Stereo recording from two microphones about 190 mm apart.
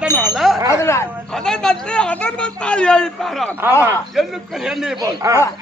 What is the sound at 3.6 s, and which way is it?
Speech, 10° right (ahead or behind).